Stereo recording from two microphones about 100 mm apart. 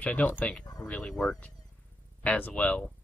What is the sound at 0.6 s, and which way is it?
Speech, 40° left (ahead or behind).